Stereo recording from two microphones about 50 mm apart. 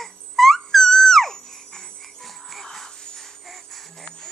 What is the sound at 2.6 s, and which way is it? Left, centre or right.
Music, centre.